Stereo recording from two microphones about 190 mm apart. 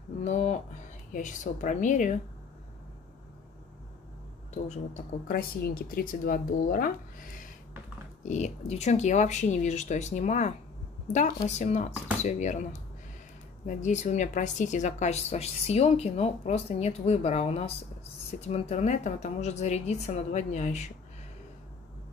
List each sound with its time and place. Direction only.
0.2 s speech: 40° left (ahead or behind)
4.6 s speech: 45° left (ahead or behind)
8.3 s speech: 35° left (ahead or behind)
13.7 s speech: 40° left (ahead or behind)